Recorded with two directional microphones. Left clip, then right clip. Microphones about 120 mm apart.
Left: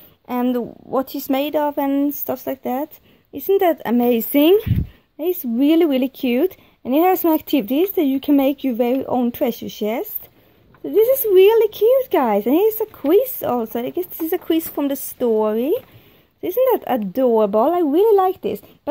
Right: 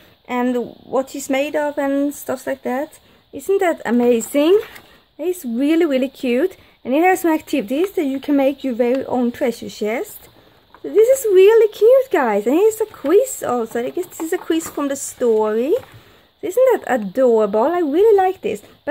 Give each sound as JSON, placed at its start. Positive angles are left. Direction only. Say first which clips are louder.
{"t": 0.3, "sound": "speech", "louder": "right 1 dB", "side_deg": 35}